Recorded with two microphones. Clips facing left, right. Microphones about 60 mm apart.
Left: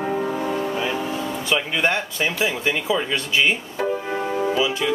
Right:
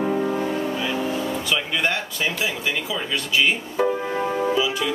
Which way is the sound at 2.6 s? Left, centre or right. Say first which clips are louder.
Left 4 dB; left.